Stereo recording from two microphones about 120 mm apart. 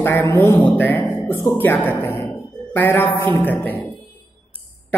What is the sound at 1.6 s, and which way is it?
Music, 15° left (ahead or behind).